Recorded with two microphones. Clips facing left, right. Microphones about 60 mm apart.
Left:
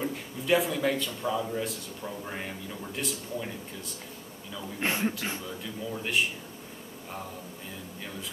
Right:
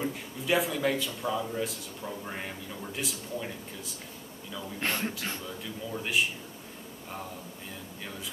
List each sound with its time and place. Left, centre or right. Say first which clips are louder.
0.0 s a man's voice: left 1 dB; centre
4.7 s a man's voice: left 3 dB; centre